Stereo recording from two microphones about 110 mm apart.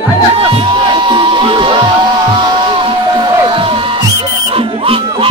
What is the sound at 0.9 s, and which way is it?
Music, 50° right (ahead or behind).